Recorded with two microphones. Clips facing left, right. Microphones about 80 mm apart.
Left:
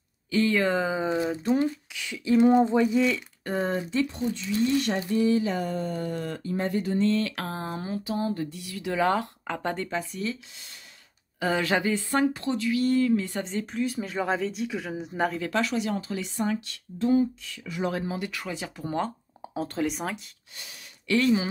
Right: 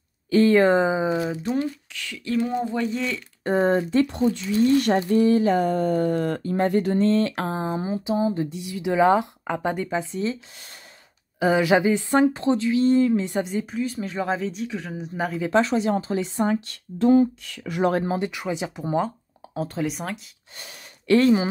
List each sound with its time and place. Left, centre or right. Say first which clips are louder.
0.3 s speech: right 7 dB; right; by 1.5 s centre
1.6 s speech: even; centre
2.8 s speech: left 3 dB; centre
3.4 s speech: right 8 dB; right
4.3 s speech: right 6 dB; right
7.1 s speech: right 5 dB; right; by 15.4 s centre
15.4 s speech: right 6 dB; right
17.0 s a sound: right 6 dB; right
17.9 s speech: right 7 dB; right
18.2 s speech: right 6 dB; centre
18.9 s speech: right 5 dB; centre
21.1 s speech: right 6 dB; right